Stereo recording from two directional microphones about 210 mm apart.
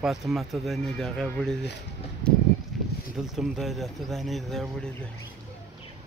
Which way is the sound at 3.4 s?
Centre (ahead or behind).